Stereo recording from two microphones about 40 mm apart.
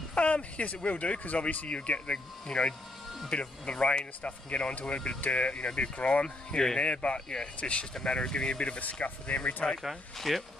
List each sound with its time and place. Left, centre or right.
0.1 s a sound: left
0.8 s speech: left
6.2 s speech: centre
6.8 s speech: left
10.1 s speech: centre